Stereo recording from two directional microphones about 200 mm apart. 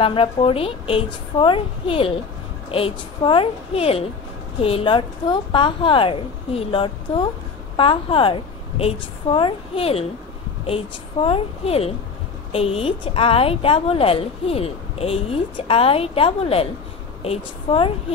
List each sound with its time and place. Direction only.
0.0 s a woman's voice: 25° left (ahead or behind)